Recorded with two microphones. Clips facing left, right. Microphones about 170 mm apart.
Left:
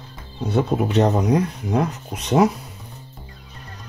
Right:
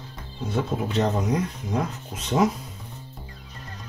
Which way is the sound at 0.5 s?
70° left (ahead or behind).